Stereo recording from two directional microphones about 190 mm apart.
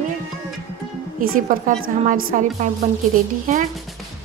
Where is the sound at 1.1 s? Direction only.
45° right (ahead or behind).